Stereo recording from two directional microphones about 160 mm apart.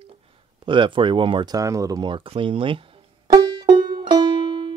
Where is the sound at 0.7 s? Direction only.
30° right (ahead or behind).